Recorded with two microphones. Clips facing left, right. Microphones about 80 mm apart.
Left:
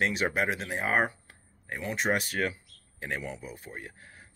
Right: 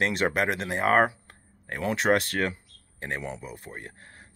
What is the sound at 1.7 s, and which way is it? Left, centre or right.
Speech, right.